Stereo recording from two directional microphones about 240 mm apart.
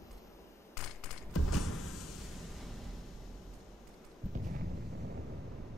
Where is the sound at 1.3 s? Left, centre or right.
Left.